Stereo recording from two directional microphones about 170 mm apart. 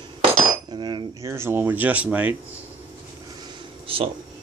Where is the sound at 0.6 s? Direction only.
25° right (ahead or behind).